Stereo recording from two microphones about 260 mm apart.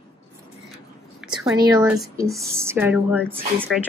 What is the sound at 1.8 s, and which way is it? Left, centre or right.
Speech, centre.